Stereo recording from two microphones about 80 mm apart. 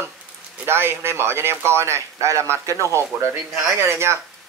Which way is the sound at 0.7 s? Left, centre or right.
Right.